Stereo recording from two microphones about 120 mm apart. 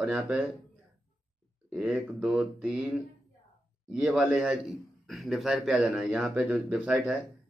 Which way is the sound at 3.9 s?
10° right (ahead or behind).